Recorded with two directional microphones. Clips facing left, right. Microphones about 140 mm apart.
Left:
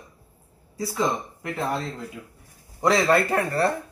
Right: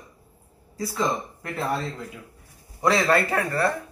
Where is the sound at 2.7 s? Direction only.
15° left (ahead or behind).